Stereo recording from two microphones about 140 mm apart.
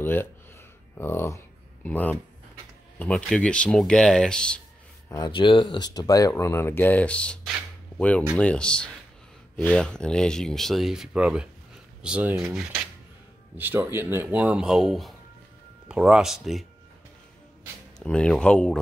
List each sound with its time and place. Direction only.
0.0 s speech: 15° left (ahead or behind)
5.1 s speech: 35° left (ahead or behind); by 7.3 s 10° left (ahead or behind)
8.4 s speech: 5° left (ahead or behind)
13.6 s speech: 15° right (ahead or behind)
18.0 s speech: 5° left (ahead or behind)